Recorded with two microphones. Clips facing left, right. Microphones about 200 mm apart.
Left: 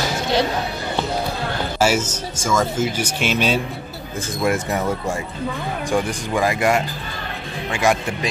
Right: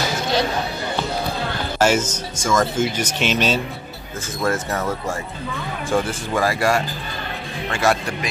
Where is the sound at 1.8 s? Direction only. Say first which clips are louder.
Right 1 dB; 5° left (ahead or behind).